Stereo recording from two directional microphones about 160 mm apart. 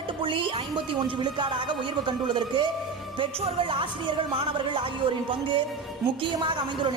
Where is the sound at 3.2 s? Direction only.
35° right (ahead or behind).